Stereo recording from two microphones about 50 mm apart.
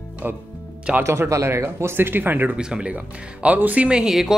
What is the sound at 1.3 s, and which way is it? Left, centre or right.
Speech, right.